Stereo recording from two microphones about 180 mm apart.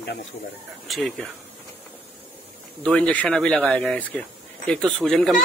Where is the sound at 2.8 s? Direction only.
5° left (ahead or behind).